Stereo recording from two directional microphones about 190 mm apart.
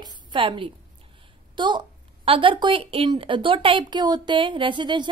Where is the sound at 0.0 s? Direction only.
25° right (ahead or behind).